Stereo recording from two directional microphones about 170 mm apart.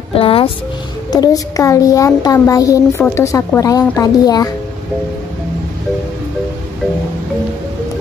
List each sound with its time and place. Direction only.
0.1 s speech: 30° left (ahead or behind)
1.1 s a child's voice: 20° left (ahead or behind)